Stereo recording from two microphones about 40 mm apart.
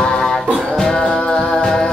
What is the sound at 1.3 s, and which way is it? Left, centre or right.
Music, centre.